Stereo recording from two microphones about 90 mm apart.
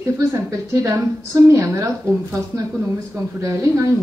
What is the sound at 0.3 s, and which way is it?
Speech, 35° right (ahead or behind).